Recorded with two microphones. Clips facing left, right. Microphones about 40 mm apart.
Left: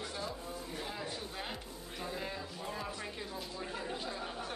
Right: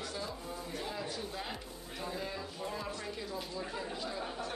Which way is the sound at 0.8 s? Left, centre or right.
Centre.